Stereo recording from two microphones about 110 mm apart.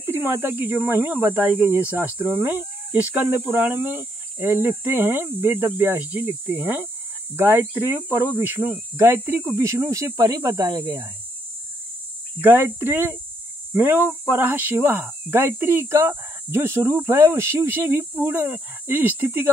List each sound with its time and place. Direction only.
0.0 s speech: 20° right (ahead or behind)
12.4 s speech: 20° right (ahead or behind)